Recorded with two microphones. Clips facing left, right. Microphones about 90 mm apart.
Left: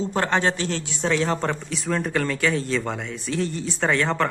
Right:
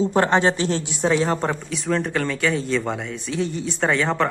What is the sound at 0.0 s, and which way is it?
Speech, 20° right (ahead or behind).